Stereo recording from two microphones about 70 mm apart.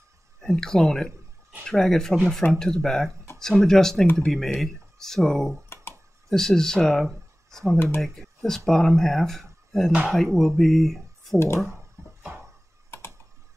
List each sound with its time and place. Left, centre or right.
0.4 s speech: centre
11.3 s speech: left
12.0 s a sound: right